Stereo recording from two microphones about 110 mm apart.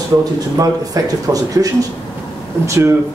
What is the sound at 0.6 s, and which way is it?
Speech, 30° right (ahead or behind).